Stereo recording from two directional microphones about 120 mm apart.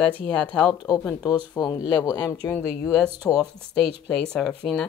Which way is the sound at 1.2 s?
30° left (ahead or behind).